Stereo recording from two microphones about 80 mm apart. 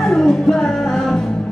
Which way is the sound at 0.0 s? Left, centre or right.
Centre.